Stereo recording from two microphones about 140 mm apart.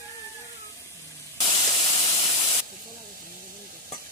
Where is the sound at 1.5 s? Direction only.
30° left (ahead or behind).